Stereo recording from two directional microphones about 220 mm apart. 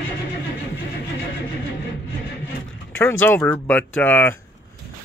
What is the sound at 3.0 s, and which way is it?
Speech, 10° left (ahead or behind).